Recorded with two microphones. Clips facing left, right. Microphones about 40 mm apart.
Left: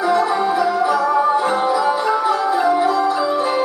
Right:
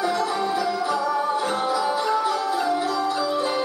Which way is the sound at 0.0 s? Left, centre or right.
Left.